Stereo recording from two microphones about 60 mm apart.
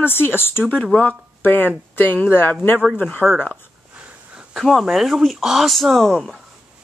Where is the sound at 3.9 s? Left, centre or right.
Centre.